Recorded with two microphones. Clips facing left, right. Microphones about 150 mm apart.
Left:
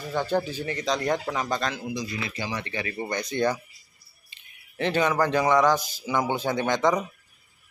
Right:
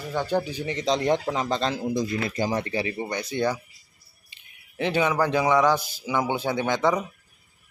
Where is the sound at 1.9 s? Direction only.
45° right (ahead or behind).